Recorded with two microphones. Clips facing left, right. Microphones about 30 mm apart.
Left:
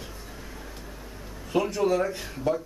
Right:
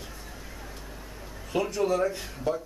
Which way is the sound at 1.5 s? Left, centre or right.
Centre.